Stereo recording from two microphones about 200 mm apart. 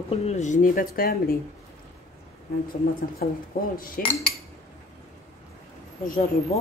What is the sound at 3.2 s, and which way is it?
Cutlery, 40° left (ahead or behind).